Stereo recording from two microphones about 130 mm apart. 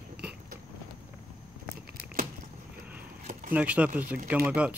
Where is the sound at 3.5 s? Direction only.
10° right (ahead or behind).